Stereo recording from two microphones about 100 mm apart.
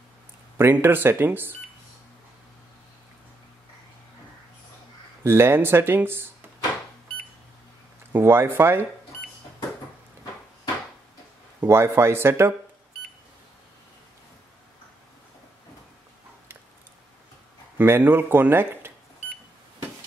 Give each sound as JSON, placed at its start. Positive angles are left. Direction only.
{"t": 0.6, "sound": "speech", "side_deg": -25}
{"t": 5.2, "sound": "speech", "side_deg": -25}
{"t": 8.1, "sound": "speech", "side_deg": -25}
{"t": 11.6, "sound": "speech", "side_deg": -25}
{"t": 17.7, "sound": "speech", "side_deg": -20}